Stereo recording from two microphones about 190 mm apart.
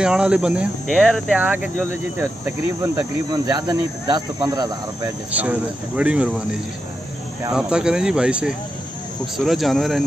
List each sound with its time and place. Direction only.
0.0 s speech: 5° right (ahead or behind)
5.3 s speech: 10° right (ahead or behind)